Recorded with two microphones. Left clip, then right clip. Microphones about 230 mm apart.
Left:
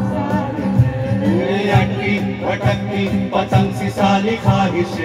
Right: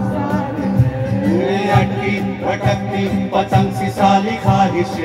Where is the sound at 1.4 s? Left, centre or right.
Right.